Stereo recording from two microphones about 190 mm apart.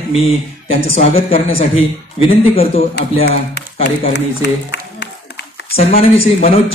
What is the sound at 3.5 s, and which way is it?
Speech, 60° left (ahead or behind).